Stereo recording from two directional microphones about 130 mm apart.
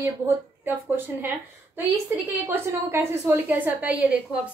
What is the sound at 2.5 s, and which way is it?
A woman's voice, 20° right (ahead or behind).